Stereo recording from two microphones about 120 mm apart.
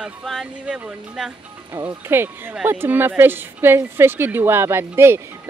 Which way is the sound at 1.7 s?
35° right (ahead or behind).